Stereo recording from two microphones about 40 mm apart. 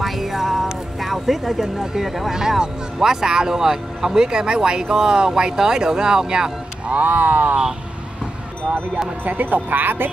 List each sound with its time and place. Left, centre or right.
0.0 s a sound: centre
0.9 s speech: centre
6.9 s speech: right
8.6 s speech: right